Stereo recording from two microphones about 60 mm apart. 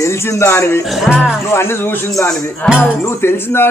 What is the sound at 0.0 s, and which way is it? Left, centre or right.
Speech, left.